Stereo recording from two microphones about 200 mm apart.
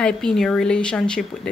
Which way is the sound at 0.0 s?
5° left (ahead or behind).